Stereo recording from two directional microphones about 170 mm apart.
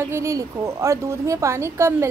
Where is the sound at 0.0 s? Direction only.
15° right (ahead or behind).